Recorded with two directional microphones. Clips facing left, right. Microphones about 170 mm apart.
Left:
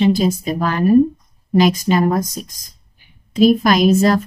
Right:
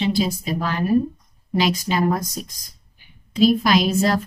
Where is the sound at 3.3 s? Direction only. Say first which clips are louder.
Left 4 dB; 50° left (ahead or behind).